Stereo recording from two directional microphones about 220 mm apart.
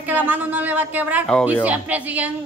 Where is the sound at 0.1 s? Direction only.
10° right (ahead or behind).